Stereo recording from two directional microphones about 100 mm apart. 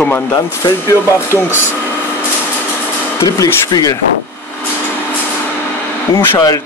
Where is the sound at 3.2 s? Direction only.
40° left (ahead or behind).